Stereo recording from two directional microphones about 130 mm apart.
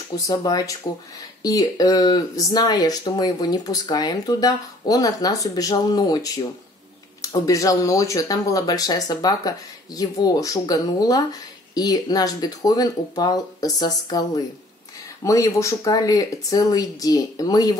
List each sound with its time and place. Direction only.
0.3 s speech: 30° left (ahead or behind)